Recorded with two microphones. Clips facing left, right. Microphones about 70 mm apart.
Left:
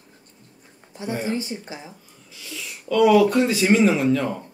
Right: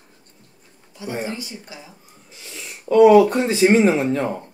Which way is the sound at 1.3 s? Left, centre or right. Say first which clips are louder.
Left 5 dB; left.